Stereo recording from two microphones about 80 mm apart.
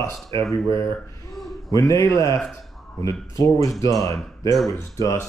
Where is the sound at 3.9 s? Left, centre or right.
Left.